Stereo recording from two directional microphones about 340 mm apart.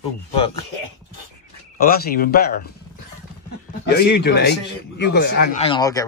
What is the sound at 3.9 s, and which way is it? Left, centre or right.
Speech, left.